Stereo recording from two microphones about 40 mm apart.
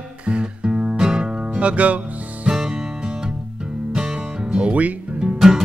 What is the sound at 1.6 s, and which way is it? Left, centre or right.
Speech, right.